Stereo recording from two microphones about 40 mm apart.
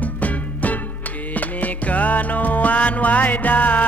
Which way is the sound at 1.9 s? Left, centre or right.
Left.